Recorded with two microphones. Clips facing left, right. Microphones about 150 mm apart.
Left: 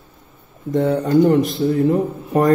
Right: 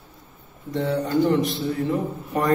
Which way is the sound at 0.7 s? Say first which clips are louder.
Left 7 dB; 50° left (ahead or behind).